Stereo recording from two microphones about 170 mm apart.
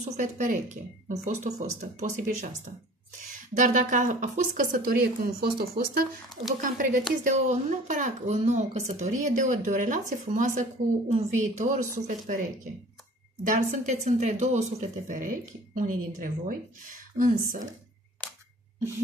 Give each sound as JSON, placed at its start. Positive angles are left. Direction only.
{"t": 0.1, "sound": "a woman's voice", "side_deg": -50}
{"t": 3.5, "sound": "a woman's voice", "side_deg": -50}
{"t": 6.6, "sound": "a woman's voice", "side_deg": -50}
{"t": 13.5, "sound": "a woman's voice", "side_deg": -45}
{"t": 18.2, "sound": "camera", "side_deg": 5}